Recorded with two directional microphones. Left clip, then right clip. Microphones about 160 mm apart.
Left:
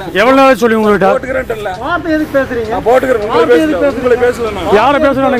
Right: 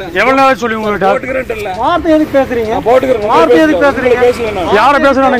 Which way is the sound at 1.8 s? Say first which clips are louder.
Right 5 dB; 25° right (ahead or behind).